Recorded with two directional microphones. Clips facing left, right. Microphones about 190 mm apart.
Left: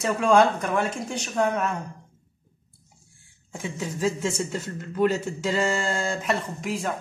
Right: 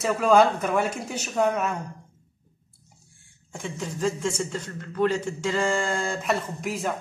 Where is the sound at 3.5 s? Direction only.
5° left (ahead or behind).